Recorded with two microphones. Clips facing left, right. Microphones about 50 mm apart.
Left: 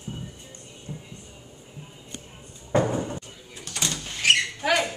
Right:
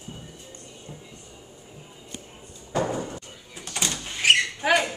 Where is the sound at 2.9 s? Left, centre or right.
Centre.